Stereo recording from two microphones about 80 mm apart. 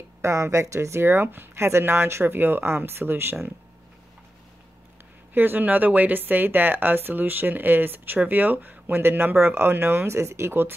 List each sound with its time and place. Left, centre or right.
0.2 s speech: right
5.3 s speech: right